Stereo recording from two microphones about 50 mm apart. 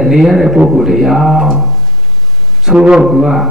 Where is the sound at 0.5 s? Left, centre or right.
Centre.